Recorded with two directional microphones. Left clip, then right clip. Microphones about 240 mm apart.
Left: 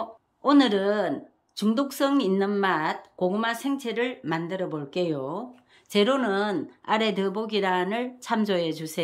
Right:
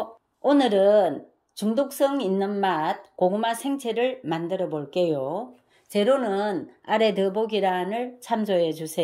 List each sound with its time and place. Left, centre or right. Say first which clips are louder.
0.4 s speech: right 2 dB; centre